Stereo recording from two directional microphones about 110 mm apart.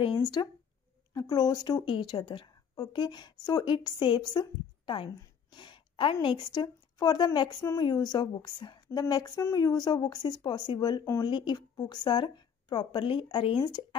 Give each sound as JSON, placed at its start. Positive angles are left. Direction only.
{"t": 0.0, "sound": "a woman's voice", "side_deg": 40}
{"t": 3.7, "sound": "a woman's voice", "side_deg": 45}
{"t": 5.5, "sound": "a sound", "side_deg": 45}
{"t": 6.2, "sound": "a woman's voice", "side_deg": 45}